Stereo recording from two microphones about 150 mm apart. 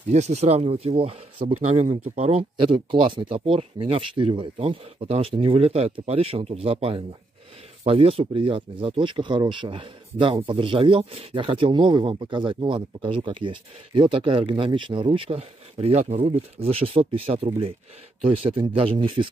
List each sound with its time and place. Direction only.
0.1 s speech: 50° right (ahead or behind)